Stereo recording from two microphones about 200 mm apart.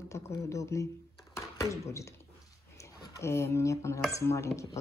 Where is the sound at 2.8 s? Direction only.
15° left (ahead or behind).